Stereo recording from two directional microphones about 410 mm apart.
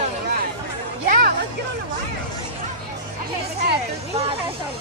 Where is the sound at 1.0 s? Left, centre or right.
Right.